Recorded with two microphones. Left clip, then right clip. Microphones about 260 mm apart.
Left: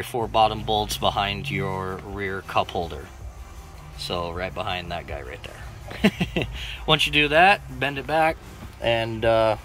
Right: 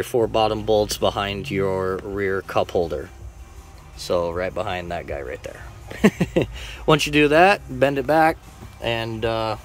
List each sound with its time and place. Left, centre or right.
0.0 s speech: centre
4.0 s speech: centre